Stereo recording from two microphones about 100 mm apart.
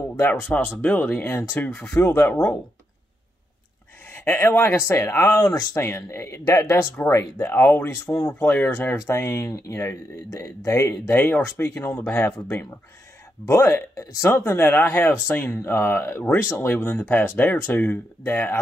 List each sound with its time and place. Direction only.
0.3 s speech: 15° left (ahead or behind)
4.1 s speech: 20° left (ahead or behind)
7.9 s speech: 35° left (ahead or behind)
8.4 s speech: 20° left (ahead or behind)
11.1 s speech: 20° left (ahead or behind)